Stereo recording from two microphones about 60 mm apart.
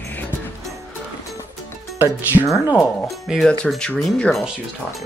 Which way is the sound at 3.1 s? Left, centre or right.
Centre.